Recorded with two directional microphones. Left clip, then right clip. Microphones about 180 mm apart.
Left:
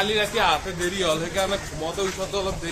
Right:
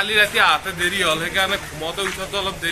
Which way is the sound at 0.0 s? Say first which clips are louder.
Right 5 dB; 15° left (ahead or behind).